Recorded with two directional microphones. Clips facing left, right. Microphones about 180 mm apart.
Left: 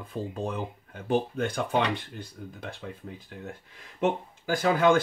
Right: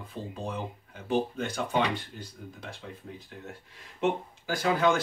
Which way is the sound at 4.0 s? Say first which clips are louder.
Left 1 dB; 50° left (ahead or behind).